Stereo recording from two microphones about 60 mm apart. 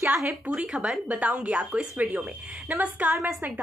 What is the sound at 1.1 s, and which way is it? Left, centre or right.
A woman's voice, right.